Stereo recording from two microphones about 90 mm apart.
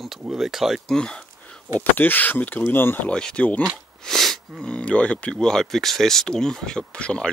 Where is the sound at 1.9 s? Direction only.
20° left (ahead or behind).